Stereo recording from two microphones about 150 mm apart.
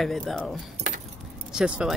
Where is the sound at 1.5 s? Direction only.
5° right (ahead or behind).